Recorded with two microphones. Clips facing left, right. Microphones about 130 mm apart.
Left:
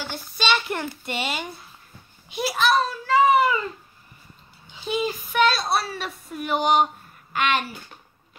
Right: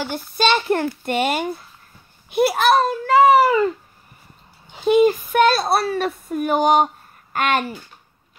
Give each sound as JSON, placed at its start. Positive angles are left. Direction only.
{"t": 0.4, "sound": "a woman's voice", "side_deg": -45}
{"t": 4.7, "sound": "a woman's voice", "side_deg": -50}